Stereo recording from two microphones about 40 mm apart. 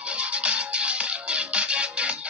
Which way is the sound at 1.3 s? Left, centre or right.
Right.